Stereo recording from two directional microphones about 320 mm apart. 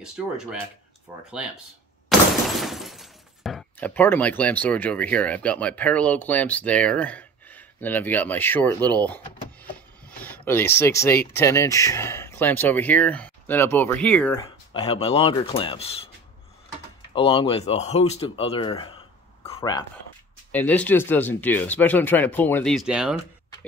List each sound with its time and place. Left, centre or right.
0.0 s speech: centre
2.0 s speech: centre
14.7 s speech: centre
17.1 s speech: centre
19.4 s a sound: centre
20.5 s speech: centre